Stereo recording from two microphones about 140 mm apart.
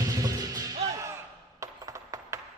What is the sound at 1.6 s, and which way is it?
Coin, 25° right (ahead or behind).